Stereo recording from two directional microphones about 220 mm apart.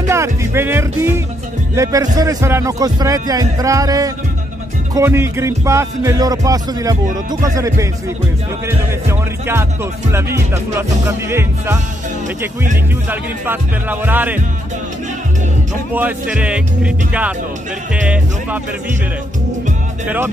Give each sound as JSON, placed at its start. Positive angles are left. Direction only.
{"t": 0.1, "sound": "music", "side_deg": -10}
{"t": 1.8, "sound": "a man's voice", "side_deg": -15}
{"t": 13.1, "sound": "a man's voice", "side_deg": -10}
{"t": 15.9, "sound": "speech", "side_deg": -5}